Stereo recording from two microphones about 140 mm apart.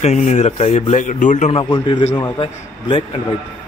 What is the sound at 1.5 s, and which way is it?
Speech, 35° left (ahead or behind).